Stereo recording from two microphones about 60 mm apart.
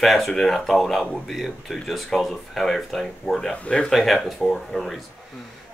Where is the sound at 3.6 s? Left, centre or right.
Centre.